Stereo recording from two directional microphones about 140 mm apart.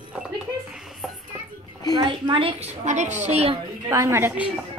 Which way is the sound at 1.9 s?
35° right (ahead or behind).